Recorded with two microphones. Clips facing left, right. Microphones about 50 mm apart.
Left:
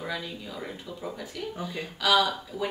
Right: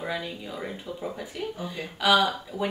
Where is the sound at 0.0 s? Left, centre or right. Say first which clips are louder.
Right 2 dB; centre.